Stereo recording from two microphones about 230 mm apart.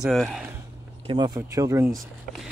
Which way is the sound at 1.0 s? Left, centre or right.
Centre.